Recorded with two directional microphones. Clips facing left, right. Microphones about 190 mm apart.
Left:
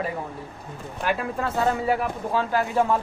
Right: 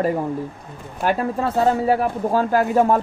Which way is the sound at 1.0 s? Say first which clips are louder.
Right 5 dB; 35° right (ahead or behind).